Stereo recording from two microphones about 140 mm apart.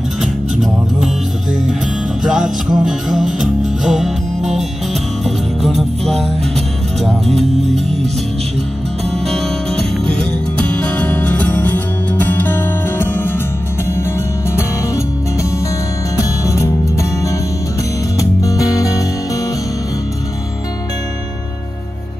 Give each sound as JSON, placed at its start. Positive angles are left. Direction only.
{"t": 0.2, "sound": "music", "side_deg": 0}
{"t": 2.2, "sound": "music", "side_deg": -5}
{"t": 5.2, "sound": "music", "side_deg": 0}
{"t": 10.1, "sound": "music", "side_deg": 10}
{"t": 16.2, "sound": "music", "side_deg": 20}
{"t": 18.2, "sound": "music", "side_deg": 25}